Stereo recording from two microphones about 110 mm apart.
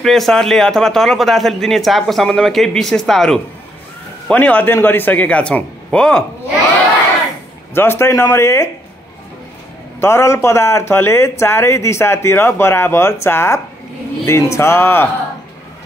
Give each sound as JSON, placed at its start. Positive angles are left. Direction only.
{"t": 0.0, "sound": "a man's voice", "side_deg": 5}
{"t": 7.7, "sound": "speech", "side_deg": 20}
{"t": 9.9, "sound": "speech", "side_deg": 25}